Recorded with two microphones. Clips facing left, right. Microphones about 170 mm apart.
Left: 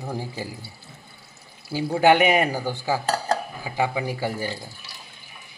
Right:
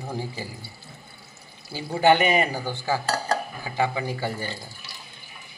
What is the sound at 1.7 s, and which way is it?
A man's voice, 5° left (ahead or behind).